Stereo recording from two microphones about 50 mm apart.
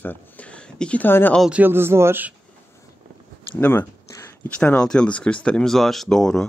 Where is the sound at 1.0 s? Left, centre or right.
Left.